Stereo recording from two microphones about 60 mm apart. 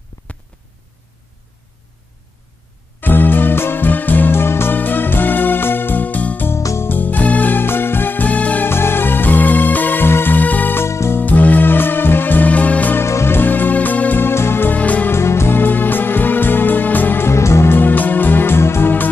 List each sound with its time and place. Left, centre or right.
0.2 s hum: left
3.0 s music: left
8.6 s music: left
10.8 s music: left
11.1 s music: left
12.9 s music: left
14.8 s music: left
15.0 s music: left
17.3 s music: left
17.7 s music: left